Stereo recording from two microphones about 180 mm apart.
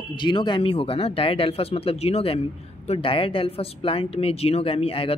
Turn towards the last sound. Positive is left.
turn(degrees=30)  # may be behind; listen again after turning